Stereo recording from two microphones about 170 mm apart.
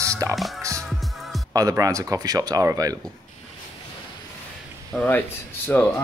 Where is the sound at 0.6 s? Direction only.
20° right (ahead or behind).